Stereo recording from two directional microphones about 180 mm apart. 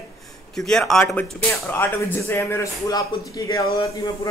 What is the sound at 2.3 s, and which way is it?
Speech, 15° left (ahead or behind).